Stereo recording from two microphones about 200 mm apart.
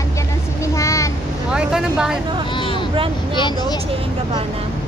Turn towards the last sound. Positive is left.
turn(degrees=25)  # may be behind; listen again after turning